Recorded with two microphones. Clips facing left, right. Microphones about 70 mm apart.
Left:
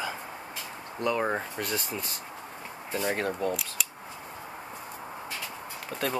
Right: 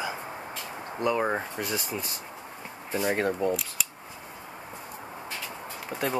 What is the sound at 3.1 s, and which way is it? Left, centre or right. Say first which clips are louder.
Speech: right 5 dB; right.